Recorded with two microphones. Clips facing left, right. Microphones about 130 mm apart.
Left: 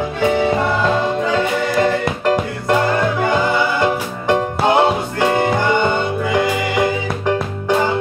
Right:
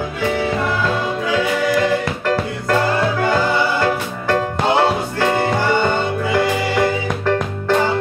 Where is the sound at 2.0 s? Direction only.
20° left (ahead or behind).